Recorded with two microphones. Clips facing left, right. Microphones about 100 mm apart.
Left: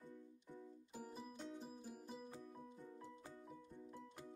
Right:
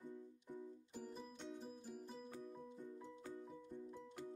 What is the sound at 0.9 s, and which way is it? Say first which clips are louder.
Music: left 1 dB; 5° left (ahead or behind).